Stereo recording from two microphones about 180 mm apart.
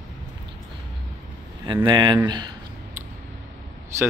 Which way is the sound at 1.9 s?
25° right (ahead or behind).